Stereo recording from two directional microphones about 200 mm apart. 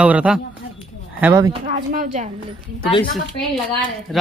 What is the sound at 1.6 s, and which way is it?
Speech, 40° right (ahead or behind).